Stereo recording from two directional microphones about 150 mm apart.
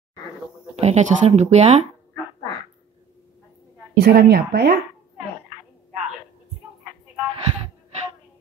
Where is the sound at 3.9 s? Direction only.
90° right.